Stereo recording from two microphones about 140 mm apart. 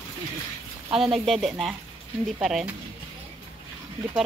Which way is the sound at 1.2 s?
Centre (ahead or behind).